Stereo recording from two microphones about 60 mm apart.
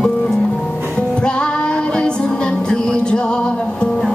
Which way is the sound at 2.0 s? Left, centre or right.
Centre.